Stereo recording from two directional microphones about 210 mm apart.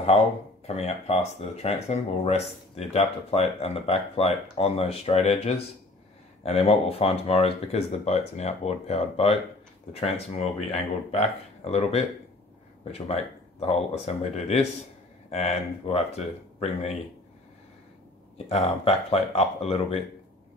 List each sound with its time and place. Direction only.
0.1 s speech: 30° left (ahead or behind)
18.5 s speech: 30° left (ahead or behind)